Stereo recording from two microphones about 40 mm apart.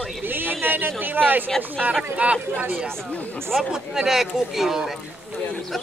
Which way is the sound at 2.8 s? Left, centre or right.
Centre.